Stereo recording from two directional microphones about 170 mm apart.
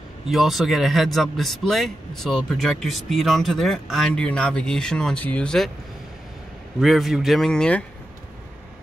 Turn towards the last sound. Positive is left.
turn(degrees=5)  # may be behind; listen again after turning